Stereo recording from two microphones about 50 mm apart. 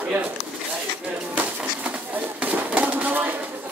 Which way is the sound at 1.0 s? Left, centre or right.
Right.